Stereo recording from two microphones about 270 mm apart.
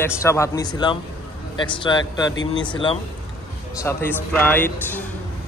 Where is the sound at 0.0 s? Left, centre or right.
Centre.